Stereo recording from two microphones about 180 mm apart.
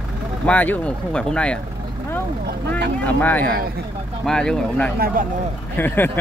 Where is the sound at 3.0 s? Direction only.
10° left (ahead or behind).